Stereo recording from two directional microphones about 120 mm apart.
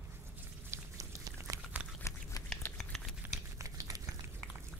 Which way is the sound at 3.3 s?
25° right (ahead or behind).